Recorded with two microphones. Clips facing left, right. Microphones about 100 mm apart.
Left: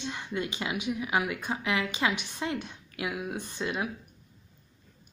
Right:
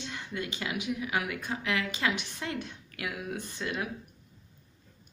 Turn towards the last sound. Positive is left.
turn(degrees=20)  # may be behind; listen again after turning